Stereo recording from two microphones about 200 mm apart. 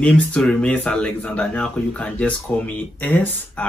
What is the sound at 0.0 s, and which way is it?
Speech, 5° left (ahead or behind).